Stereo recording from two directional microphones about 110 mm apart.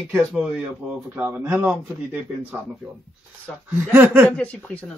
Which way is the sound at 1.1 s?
15° right (ahead or behind).